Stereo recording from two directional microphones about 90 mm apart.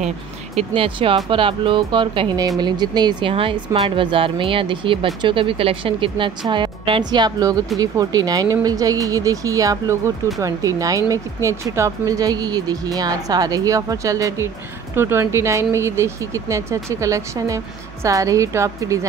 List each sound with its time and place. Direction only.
0.7 s speech: 75° right (ahead or behind)
2.3 s speech: 40° right (ahead or behind)
3.3 s speech: 85° right
6.5 s speech: 60° right (ahead or behind); by 14.5 s 40° right (ahead or behind)
15.0 s speech: 25° right (ahead or behind)